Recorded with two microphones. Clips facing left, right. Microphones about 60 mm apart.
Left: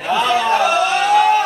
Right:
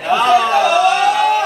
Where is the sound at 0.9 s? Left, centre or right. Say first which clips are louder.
Even; centre.